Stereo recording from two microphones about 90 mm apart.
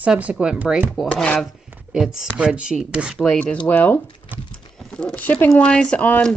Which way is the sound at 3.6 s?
20° left (ahead or behind).